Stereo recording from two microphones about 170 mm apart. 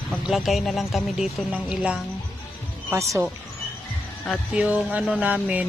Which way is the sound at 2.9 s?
15° right (ahead or behind).